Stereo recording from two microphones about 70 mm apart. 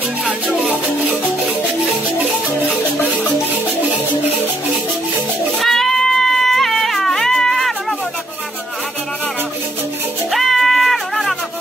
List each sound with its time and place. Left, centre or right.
2.7 s music: left
5.6 s a sound: centre
10.3 s music: centre